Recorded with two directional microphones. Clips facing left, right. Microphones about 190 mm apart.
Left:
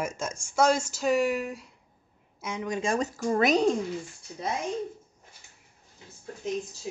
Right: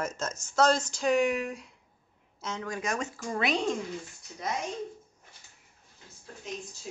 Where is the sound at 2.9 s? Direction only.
40° left (ahead or behind).